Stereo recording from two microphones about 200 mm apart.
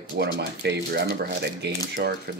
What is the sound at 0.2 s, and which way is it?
Speech, 55° right (ahead or behind).